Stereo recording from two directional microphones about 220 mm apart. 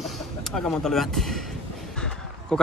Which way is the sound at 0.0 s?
Centre (ahead or behind).